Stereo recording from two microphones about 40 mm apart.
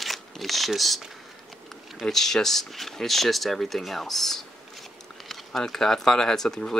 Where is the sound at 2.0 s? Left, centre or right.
Centre.